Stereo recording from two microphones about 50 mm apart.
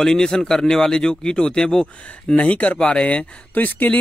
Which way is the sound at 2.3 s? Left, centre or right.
Left.